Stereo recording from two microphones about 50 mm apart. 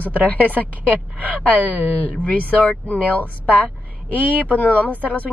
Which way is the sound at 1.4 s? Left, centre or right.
Left.